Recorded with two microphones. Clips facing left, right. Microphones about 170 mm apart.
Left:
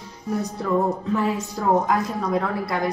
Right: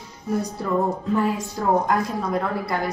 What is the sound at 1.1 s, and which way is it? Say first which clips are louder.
A woman's voice: right 1 dB; centre (ahead or behind).